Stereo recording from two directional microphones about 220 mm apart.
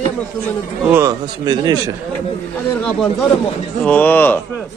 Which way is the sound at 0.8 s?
10° right (ahead or behind).